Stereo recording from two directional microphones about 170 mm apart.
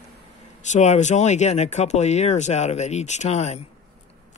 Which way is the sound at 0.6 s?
45° left (ahead or behind).